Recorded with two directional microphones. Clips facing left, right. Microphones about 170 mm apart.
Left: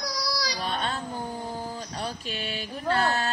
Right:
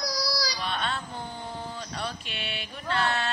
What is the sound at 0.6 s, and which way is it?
Baby cry, 35° left (ahead or behind).